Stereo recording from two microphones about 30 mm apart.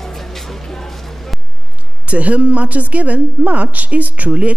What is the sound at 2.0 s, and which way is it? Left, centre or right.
A woman's voice, right.